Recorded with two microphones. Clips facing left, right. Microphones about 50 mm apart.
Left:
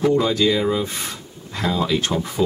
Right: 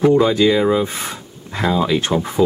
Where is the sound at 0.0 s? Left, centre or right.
Centre.